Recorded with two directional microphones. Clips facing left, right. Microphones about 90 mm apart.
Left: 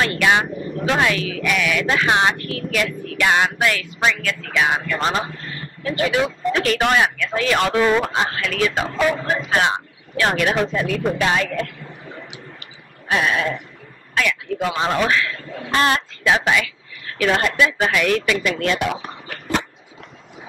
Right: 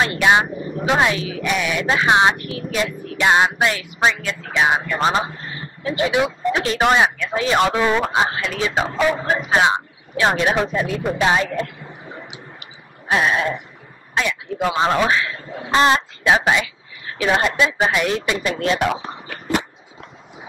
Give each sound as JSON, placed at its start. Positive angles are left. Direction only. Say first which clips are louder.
{"t": 0.0, "sound": "speech", "louder": "right 2 dB", "side_deg": -25}
{"t": 11.1, "sound": "a sound", "louder": "right 2 dB", "side_deg": -25}
{"t": 13.1, "sound": "speech", "louder": "right 1 dB", "side_deg": -25}